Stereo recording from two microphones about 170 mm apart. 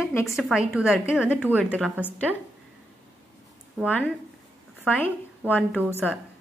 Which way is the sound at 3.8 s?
5° right (ahead or behind).